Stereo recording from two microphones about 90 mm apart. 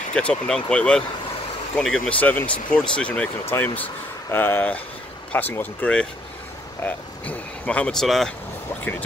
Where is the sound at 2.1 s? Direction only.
15° left (ahead or behind).